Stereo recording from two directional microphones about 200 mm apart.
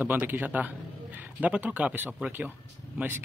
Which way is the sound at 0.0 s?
10° right (ahead or behind).